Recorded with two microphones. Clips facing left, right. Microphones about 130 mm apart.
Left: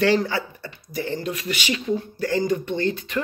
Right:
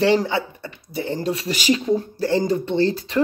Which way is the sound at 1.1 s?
35° right (ahead or behind).